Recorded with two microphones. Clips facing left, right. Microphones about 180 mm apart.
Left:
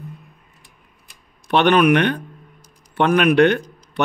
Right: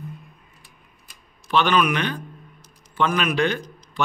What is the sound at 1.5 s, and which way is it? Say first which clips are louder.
A man's voice: left 6 dB; 60° left (ahead or behind).